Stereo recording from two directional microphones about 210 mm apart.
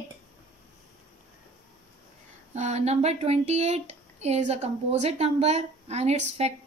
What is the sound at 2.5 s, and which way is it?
Speech, 35° right (ahead or behind).